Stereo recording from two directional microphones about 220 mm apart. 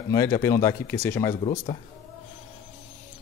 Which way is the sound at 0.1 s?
15° left (ahead or behind).